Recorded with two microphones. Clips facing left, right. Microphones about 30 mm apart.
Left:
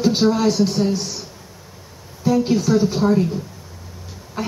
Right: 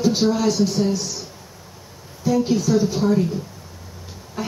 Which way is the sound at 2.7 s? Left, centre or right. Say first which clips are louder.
Left 2 dB; centre.